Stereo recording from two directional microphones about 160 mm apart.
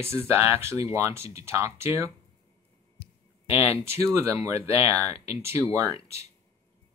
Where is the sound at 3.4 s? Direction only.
15° right (ahead or behind).